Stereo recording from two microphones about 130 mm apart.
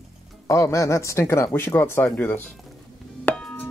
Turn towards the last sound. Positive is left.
turn(degrees=10)  # may be behind; listen again after turning